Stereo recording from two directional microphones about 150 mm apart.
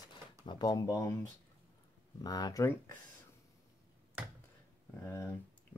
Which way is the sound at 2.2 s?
25° left (ahead or behind).